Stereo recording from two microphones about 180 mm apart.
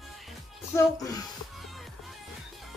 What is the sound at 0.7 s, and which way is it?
Speech, 20° left (ahead or behind).